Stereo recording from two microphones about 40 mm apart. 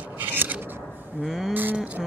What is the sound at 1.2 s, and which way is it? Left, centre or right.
Speech, centre.